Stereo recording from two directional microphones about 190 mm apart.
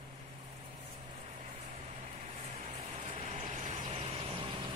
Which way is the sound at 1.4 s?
35° right (ahead or behind).